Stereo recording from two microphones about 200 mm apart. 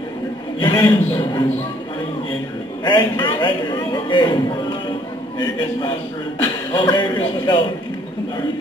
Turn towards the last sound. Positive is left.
turn(degrees=20)  # may be behind; listen again after turning